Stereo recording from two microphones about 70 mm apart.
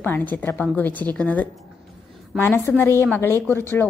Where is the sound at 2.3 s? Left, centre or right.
Left.